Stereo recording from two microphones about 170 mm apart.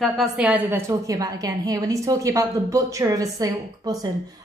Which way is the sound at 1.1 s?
20° right (ahead or behind).